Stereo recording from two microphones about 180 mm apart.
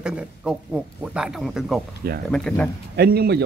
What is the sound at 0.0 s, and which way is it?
Speech, 5° right (ahead or behind).